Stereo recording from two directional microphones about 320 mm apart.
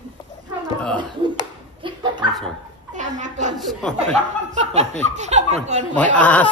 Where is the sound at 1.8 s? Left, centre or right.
Centre.